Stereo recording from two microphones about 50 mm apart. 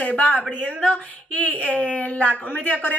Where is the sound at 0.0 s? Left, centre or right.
Left.